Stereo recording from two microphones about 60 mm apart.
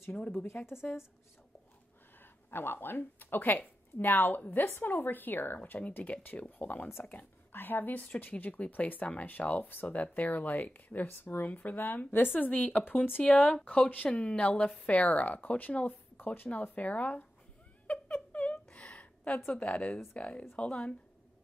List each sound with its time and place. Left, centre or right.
0.5 s speech: left
2.5 s speech: left
5.6 s speech: left
6.9 s speech: left
13.2 s speech: left
17.8 s a sound: left
20.2 s speech: left